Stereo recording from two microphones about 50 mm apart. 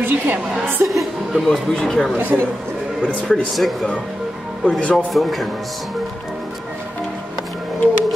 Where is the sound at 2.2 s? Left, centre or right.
Right.